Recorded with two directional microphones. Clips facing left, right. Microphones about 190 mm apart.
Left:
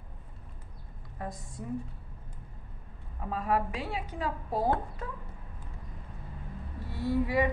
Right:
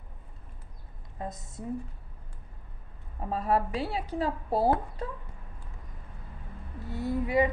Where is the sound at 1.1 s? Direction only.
25° right (ahead or behind).